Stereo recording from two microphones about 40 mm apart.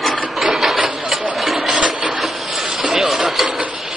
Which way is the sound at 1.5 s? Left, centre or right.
Right.